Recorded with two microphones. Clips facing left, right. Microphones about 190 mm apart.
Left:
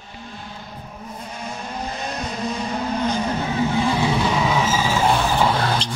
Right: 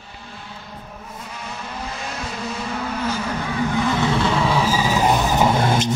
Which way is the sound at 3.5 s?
20° left (ahead or behind).